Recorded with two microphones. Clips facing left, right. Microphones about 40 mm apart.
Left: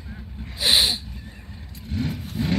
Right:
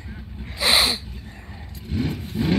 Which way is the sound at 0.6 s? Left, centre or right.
Centre.